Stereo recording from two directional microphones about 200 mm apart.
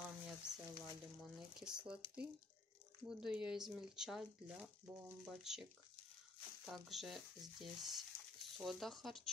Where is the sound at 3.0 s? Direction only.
5° right (ahead or behind).